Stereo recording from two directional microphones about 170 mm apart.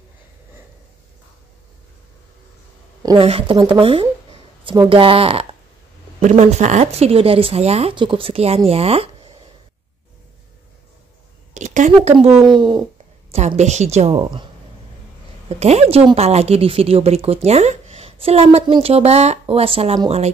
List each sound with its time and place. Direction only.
3.0 s a sound: 20° right (ahead or behind)
3.3 s a woman's voice: 30° right (ahead or behind)
11.5 s speech: 45° right (ahead or behind); by 12.8 s 25° right (ahead or behind)
13.3 s a woman's voice: 40° right (ahead or behind)
15.4 s a woman's voice: 40° right (ahead or behind)